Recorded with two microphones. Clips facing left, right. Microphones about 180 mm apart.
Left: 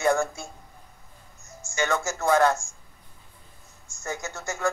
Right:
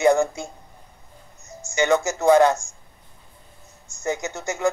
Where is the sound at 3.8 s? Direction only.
20° right (ahead or behind).